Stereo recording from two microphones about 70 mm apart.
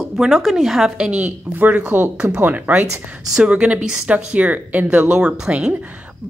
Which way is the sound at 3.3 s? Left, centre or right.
Centre.